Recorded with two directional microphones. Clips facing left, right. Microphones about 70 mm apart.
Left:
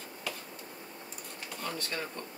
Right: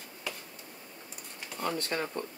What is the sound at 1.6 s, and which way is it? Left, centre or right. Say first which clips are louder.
Speech: right 5 dB; right.